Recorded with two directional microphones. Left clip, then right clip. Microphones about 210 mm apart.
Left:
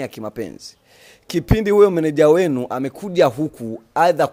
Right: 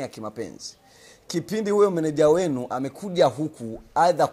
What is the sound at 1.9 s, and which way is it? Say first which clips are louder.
Speech: left 5 dB; 65° left (ahead or behind).